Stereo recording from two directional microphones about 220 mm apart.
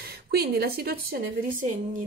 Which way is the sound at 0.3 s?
45° right (ahead or behind).